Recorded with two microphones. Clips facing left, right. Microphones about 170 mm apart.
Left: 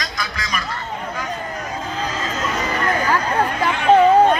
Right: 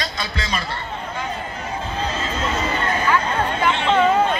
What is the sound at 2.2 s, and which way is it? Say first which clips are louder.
Crowd: even; 30° right (ahead or behind).